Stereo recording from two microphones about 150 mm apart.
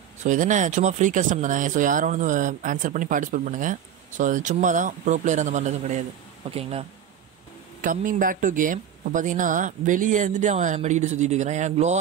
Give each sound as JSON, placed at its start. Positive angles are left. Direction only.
{"t": 0.2, "sound": "speech", "side_deg": -55}
{"t": 6.5, "sound": "speech", "side_deg": -40}
{"t": 7.8, "sound": "speech", "side_deg": -60}